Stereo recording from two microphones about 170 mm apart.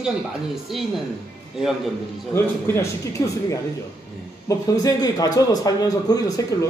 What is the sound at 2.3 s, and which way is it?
A man's voice, 15° left (ahead or behind).